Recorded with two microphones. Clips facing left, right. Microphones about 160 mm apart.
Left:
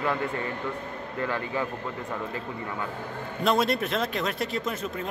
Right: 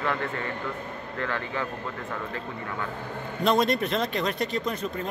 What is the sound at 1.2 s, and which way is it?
Speech, 15° left (ahead or behind).